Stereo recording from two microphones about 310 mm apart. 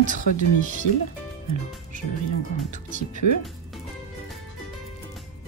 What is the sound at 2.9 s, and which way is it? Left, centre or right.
Speech, right.